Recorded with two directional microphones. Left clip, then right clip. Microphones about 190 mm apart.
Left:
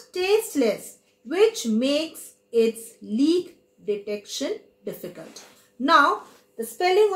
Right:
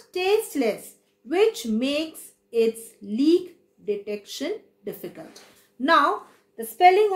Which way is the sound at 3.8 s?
40° right (ahead or behind).